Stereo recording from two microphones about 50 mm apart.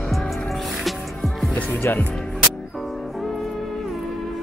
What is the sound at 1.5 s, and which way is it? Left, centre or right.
Speech, left.